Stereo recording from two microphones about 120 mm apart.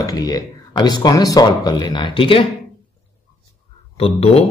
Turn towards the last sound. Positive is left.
turn(degrees=55)  # may be behind; listen again after turning